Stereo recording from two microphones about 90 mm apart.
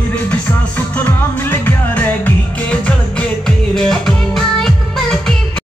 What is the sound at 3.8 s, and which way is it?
Music, 5° left (ahead or behind).